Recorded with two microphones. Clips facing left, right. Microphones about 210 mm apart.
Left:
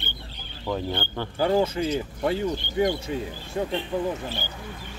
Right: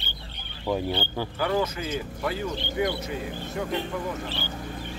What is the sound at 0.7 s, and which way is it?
Speech, 10° right (ahead or behind).